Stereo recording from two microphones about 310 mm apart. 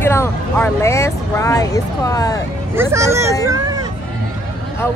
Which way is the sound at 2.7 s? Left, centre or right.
Centre.